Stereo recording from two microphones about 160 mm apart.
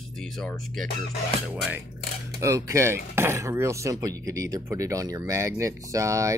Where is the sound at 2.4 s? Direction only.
20° right (ahead or behind).